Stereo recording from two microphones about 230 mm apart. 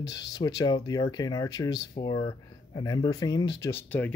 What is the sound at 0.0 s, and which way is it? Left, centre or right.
Speech, centre.